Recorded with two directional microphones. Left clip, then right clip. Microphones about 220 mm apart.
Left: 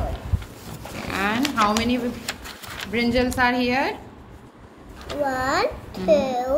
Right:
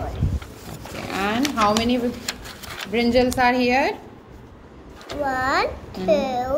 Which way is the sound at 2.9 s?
Centre (ahead or behind).